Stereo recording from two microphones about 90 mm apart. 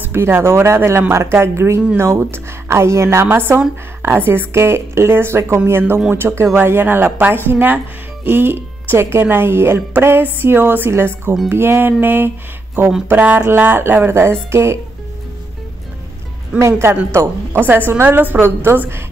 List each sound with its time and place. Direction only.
0.1 s a woman's voice: 30° right (ahead or behind)
16.5 s a woman's voice: 30° right (ahead or behind)